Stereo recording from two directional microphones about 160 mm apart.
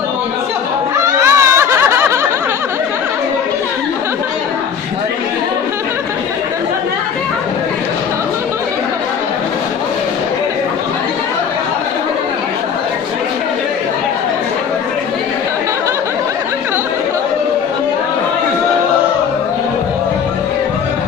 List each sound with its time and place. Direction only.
1.2 s snicker: 15° right (ahead or behind)